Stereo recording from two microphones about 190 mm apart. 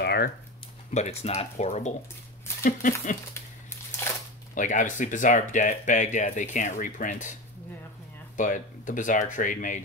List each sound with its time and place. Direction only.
0.0 s a sound: 60° left (ahead or behind)
0.9 s speech: 35° left (ahead or behind)
4.6 s speech: 40° left (ahead or behind)
8.4 s speech: 45° left (ahead or behind)